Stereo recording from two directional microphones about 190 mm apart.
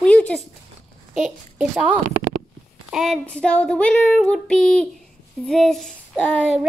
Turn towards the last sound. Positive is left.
turn(degrees=5)  # may be behind; listen again after turning